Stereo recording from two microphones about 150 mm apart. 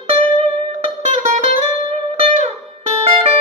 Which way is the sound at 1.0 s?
45° right (ahead or behind).